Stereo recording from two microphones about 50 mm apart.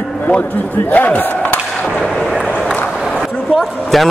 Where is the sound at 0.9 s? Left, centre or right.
Left.